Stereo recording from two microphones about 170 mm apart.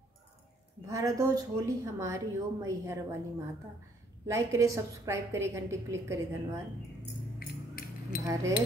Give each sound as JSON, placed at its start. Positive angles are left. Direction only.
{"t": 0.8, "sound": "a woman's voice", "side_deg": -20}
{"t": 7.3, "sound": "music", "side_deg": 60}
{"t": 8.2, "sound": "a woman's voice", "side_deg": -20}